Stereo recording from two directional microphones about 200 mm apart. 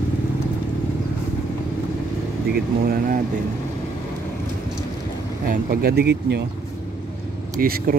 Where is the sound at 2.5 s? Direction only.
50° right (ahead or behind).